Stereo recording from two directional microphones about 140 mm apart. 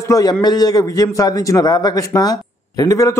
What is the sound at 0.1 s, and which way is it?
A man's voice, 30° left (ahead or behind).